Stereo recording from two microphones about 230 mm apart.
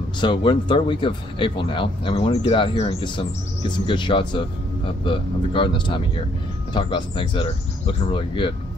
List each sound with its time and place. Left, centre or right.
0.2 s speech: left